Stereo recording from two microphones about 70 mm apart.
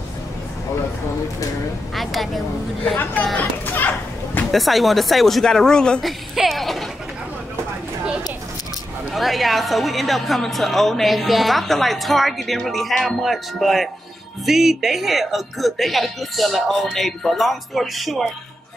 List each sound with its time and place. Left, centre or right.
2.0 s a woman's voice: centre
3.3 s a child's voice: left
4.5 s a woman's voice: centre
6.0 s a woman's voice: centre
9.1 s a woman's voice: centre